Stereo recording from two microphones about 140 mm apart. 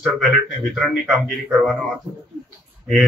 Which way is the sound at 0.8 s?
5° right (ahead or behind).